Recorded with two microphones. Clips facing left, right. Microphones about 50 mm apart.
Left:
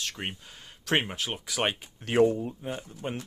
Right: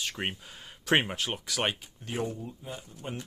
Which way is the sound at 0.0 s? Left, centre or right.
Centre.